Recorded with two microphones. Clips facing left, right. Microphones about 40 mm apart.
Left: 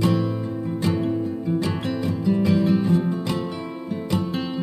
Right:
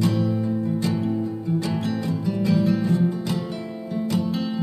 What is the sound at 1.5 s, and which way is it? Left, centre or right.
Music, left.